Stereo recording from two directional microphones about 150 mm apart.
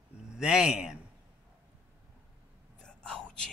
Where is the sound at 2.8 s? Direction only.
5° left (ahead or behind).